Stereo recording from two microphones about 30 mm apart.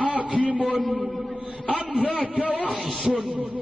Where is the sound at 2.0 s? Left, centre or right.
Right.